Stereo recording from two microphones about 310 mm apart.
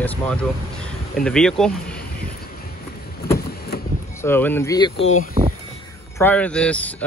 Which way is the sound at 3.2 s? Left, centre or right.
Left.